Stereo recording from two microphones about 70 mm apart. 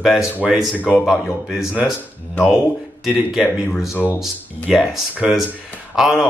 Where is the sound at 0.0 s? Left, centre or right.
Centre.